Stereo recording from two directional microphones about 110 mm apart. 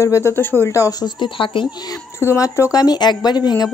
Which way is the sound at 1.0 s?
45° left (ahead or behind).